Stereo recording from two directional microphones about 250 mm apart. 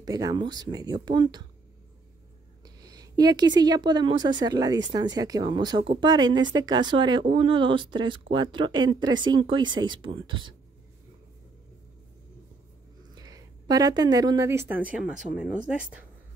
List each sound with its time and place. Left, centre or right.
0.0 s speech: centre
2.6 s speech: centre
13.1 s speech: centre